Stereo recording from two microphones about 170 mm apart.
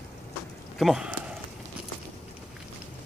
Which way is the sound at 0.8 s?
5° right (ahead or behind).